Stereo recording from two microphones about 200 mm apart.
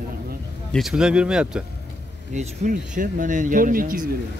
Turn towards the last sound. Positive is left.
turn(degrees=-45)  # may be behind; listen again after turning